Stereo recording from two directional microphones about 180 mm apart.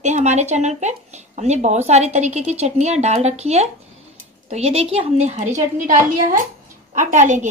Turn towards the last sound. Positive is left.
turn(degrees=-45)  # may be behind; listen again after turning